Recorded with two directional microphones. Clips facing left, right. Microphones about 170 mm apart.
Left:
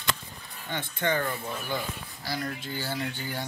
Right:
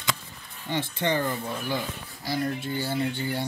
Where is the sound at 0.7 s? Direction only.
25° right (ahead or behind).